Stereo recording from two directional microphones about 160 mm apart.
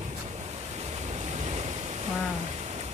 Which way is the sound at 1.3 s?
45° right (ahead or behind).